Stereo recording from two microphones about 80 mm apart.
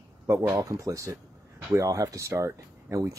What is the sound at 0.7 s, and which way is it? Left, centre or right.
Speech, right.